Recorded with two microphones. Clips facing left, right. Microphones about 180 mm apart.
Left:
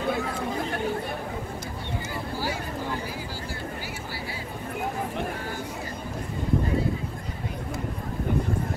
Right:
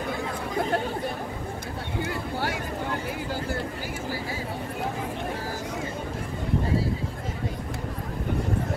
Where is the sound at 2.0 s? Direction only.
65° right (ahead or behind).